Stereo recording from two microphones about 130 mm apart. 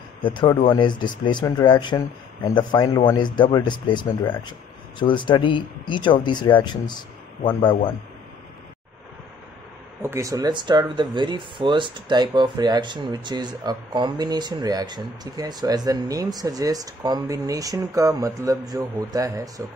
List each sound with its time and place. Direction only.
0.2 s speech: 35° left (ahead or behind)
10.0 s speech: 25° right (ahead or behind)